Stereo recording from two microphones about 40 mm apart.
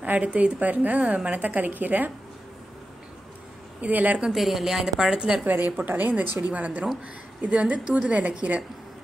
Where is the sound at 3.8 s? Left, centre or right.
Right.